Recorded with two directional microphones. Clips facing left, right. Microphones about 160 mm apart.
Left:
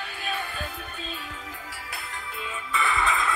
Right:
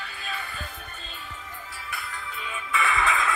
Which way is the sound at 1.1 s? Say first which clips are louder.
Left 2 dB; 90° left.